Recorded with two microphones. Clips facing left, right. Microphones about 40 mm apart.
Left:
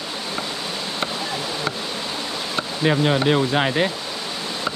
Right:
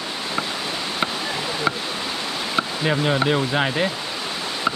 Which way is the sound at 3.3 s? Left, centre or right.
Centre.